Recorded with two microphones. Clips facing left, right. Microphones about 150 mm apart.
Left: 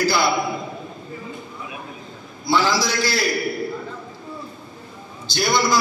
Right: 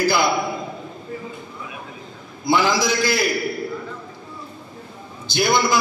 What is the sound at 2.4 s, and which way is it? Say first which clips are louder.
Speech: right 1 dB; 50° right (ahead or behind).